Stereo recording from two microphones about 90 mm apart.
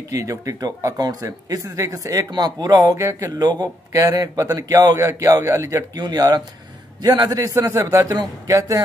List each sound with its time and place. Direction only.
0.1 s speech: 35° right (ahead or behind)
5.9 s speech: 50° right (ahead or behind)
7.2 s speech: 35° right (ahead or behind)